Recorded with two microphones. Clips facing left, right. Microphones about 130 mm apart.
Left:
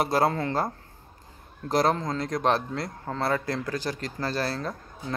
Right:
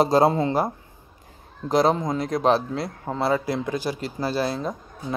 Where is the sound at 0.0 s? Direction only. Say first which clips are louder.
Right 6 dB; 20° right (ahead or behind).